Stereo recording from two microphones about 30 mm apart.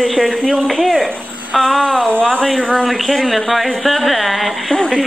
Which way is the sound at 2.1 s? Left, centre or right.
Left.